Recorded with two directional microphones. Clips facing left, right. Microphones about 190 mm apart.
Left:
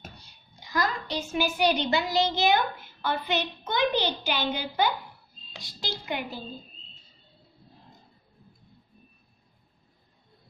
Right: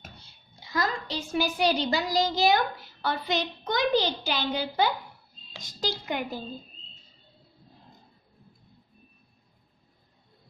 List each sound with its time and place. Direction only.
0.2 s a child's voice: 25° right (ahead or behind); by 6.4 s 45° right (ahead or behind)